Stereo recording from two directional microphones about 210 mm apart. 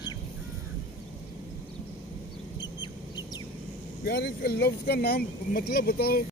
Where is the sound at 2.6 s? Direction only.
20° left (ahead or behind).